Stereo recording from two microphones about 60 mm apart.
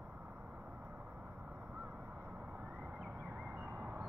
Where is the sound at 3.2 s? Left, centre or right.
Right.